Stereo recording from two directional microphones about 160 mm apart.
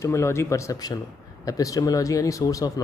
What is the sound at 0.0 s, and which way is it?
Speech, 15° left (ahead or behind).